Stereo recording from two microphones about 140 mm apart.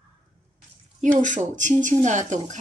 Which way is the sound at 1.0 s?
65° right (ahead or behind).